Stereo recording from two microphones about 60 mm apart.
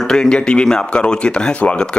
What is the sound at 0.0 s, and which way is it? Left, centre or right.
Speech, centre.